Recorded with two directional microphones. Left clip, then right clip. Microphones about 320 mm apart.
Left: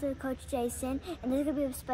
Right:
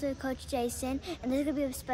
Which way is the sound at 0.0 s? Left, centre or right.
Centre.